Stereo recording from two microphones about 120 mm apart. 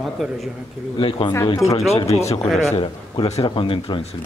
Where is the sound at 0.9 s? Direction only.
45° left (ahead or behind).